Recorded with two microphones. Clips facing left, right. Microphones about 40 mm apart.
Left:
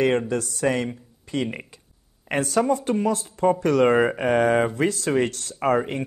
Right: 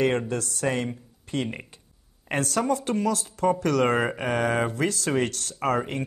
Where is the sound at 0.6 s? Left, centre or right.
Left.